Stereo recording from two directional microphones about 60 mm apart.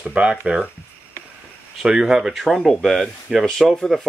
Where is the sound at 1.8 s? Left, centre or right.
Centre.